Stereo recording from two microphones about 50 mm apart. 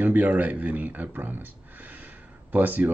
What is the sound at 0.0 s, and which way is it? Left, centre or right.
Speech, right.